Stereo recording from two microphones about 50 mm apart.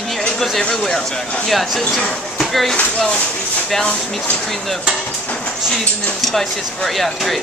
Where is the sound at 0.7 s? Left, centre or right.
Centre.